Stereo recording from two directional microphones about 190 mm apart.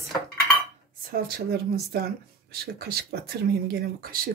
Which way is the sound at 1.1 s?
55° right (ahead or behind).